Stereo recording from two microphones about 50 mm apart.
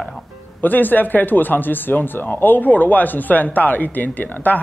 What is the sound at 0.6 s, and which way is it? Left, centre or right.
Speech, left.